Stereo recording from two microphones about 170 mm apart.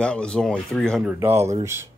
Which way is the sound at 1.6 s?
15° right (ahead or behind).